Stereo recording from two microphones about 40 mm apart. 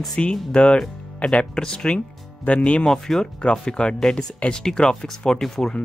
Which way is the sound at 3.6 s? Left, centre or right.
Left.